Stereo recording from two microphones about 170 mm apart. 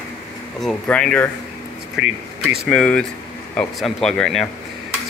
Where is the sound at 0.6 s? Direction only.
5° left (ahead or behind).